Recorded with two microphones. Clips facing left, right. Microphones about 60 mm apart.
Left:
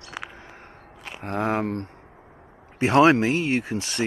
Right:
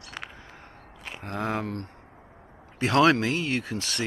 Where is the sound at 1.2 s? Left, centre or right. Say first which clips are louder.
Left 5 dB; left.